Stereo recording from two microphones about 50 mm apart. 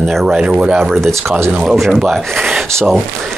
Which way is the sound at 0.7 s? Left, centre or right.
Centre.